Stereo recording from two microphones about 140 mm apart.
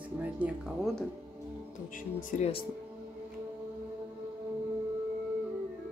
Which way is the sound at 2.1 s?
60° left (ahead or behind).